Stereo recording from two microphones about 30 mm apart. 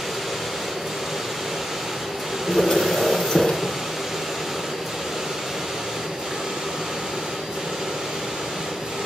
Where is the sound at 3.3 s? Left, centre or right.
Centre.